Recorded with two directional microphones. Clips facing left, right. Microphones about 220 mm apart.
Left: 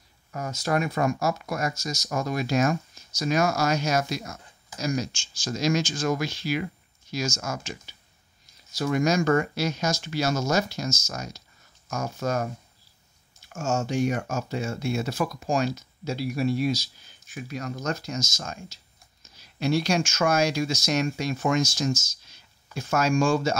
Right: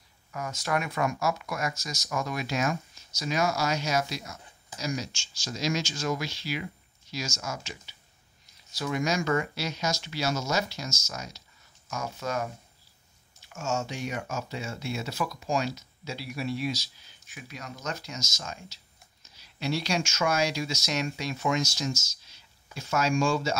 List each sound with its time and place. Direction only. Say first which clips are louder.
0.3 s speech: left 4 dB; 35° left (ahead or behind)
13.5 s speech: left 5 dB; 45° left (ahead or behind)